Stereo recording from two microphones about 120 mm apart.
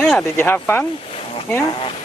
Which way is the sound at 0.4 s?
20° left (ahead or behind).